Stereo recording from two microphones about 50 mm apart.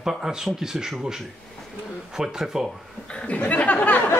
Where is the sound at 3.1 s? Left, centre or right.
Centre.